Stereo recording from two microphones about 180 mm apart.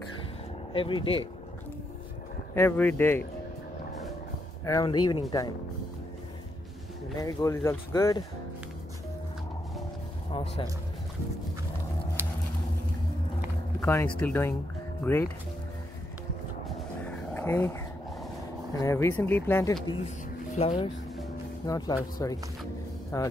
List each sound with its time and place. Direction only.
0.7 s speech: 30° left (ahead or behind)
2.5 s speech: 10° left (ahead or behind)
4.6 s speech: 20° left (ahead or behind)
7.2 s speech: 20° left (ahead or behind)
10.3 s speech: 30° left (ahead or behind)
13.7 s speech: 10° left (ahead or behind)
17.3 s a sound: 10° left (ahead or behind)
18.8 s speech: 15° left (ahead or behind)
20.5 s speech: 30° left (ahead or behind)
21.6 s speech: 20° left (ahead or behind)